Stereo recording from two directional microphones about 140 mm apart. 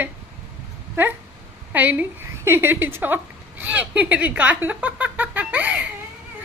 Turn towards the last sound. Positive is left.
turn(degrees=-10)  # may be behind; listen again after turning